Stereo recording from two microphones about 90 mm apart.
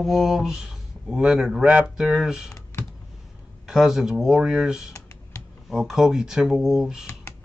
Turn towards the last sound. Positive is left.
turn(degrees=-5)  # may be behind; listen again after turning